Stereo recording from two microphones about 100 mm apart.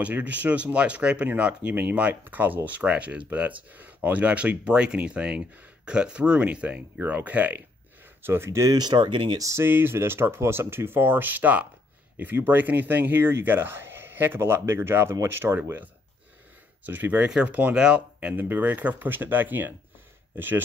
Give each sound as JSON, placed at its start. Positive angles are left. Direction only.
{"t": 0.0, "sound": "speech", "side_deg": -15}
{"t": 9.4, "sound": "speech", "side_deg": -30}